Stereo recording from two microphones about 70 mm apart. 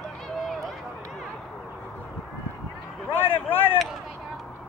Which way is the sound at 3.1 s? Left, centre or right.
Left.